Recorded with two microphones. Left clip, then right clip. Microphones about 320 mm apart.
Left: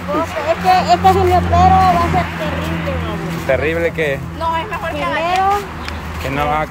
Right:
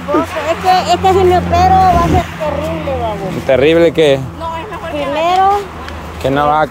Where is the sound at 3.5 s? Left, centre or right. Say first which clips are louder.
Right 7 dB; right.